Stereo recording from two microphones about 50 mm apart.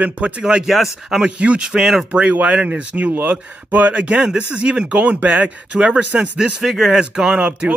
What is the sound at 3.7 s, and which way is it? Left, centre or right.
Speech, right.